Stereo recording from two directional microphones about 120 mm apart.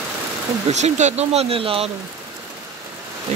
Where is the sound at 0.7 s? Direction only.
70° right (ahead or behind); by 1.8 s 50° right (ahead or behind).